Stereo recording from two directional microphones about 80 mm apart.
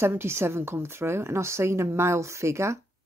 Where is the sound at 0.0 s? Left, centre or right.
Right.